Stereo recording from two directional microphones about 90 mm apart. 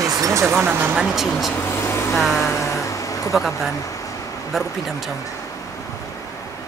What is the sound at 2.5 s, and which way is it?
Vehicle, 35° left (ahead or behind).